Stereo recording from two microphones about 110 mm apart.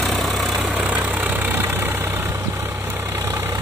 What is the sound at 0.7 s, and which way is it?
Vehicle, 15° right (ahead or behind).